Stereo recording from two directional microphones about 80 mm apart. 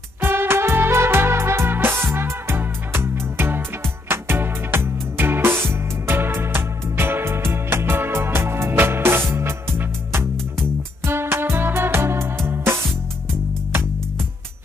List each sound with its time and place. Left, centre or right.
0.2 s music: right
11.1 s music: right